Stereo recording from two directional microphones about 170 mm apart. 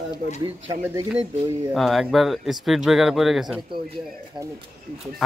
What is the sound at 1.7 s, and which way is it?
Speech, centre (ahead or behind).